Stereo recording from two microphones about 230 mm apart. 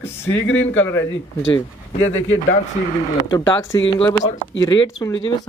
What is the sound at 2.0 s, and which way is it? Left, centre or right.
Speech, left.